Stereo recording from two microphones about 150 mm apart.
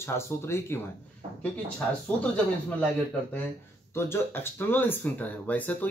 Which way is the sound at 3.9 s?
15° left (ahead or behind).